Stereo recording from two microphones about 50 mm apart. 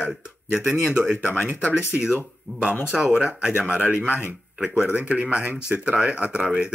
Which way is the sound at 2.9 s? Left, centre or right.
Right.